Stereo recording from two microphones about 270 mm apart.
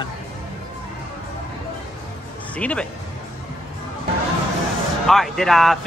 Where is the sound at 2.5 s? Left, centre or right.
Centre.